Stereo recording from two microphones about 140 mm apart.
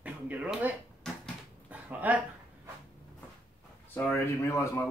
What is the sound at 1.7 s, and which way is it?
Dog, 10° right (ahead or behind).